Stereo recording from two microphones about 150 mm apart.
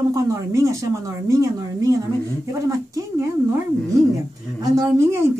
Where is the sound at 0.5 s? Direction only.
20° right (ahead or behind).